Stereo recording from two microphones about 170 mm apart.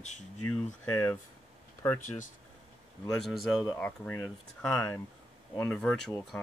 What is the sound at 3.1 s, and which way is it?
Speech, centre (ahead or behind).